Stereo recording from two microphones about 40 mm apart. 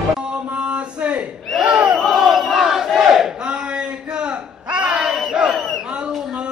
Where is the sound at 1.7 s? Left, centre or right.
Right.